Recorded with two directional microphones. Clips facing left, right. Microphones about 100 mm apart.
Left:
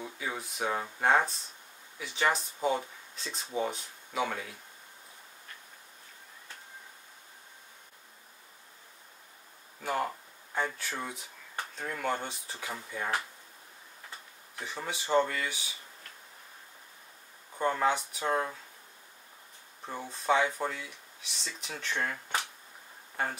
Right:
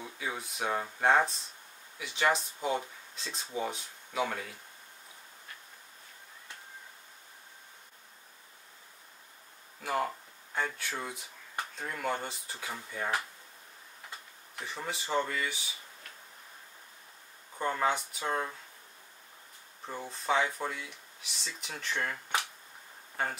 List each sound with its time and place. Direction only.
0.0 s speech: centre (ahead or behind)
9.8 s speech: centre (ahead or behind)
14.6 s speech: centre (ahead or behind)
17.6 s speech: centre (ahead or behind)
19.9 s speech: centre (ahead or behind)